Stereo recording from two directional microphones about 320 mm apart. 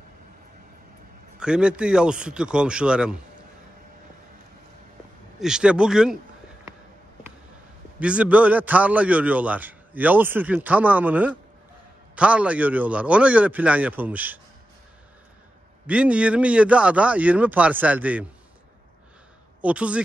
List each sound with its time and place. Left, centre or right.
1.4 s a man's voice: centre
5.4 s a man's voice: centre
8.0 s a man's voice: centre
15.9 s a man's voice: centre
19.6 s a man's voice: centre